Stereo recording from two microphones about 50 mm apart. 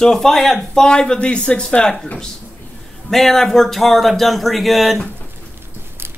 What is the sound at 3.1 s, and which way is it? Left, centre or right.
A man's voice, centre.